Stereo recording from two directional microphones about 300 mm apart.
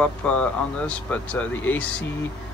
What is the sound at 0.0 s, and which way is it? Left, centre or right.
Speech, centre.